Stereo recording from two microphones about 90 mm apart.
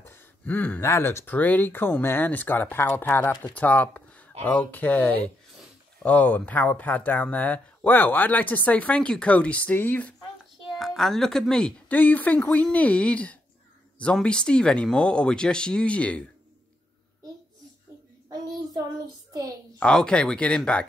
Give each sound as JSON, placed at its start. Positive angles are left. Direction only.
{"t": 0.0, "sound": "speech", "side_deg": 25}
{"t": 10.7, "sound": "speech", "side_deg": 0}
{"t": 11.9, "sound": "speech", "side_deg": 20}
{"t": 19.8, "sound": "speech", "side_deg": 10}